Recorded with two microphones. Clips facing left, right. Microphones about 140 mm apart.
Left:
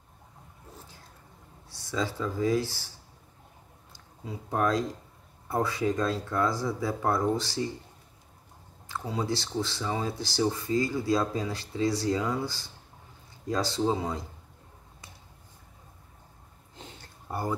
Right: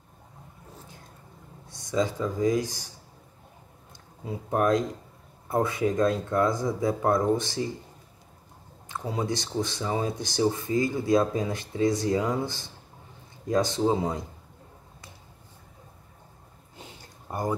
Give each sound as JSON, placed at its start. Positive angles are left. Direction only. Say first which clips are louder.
{"t": 1.7, "sound": "speech", "louder": "right 5 dB", "side_deg": -20}
{"t": 4.5, "sound": "speech", "louder": "right 3 dB", "side_deg": -20}
{"t": 8.8, "sound": "speech", "louder": "right 2 dB", "side_deg": -20}
{"t": 16.7, "sound": "a sound", "louder": "right 1 dB", "side_deg": -10}